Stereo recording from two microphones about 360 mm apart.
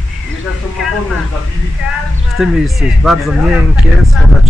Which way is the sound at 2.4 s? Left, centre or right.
Centre.